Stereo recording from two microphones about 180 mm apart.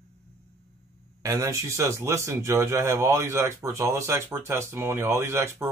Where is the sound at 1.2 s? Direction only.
15° right (ahead or behind).